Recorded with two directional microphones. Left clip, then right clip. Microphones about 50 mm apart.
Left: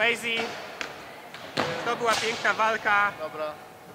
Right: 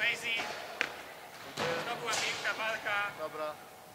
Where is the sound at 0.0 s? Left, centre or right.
Left.